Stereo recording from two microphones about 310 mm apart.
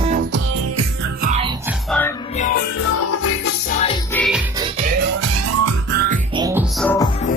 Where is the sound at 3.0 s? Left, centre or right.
Left.